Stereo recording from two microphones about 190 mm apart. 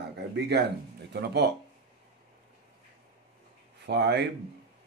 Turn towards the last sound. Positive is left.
turn(degrees=-65)  # may be behind; listen again after turning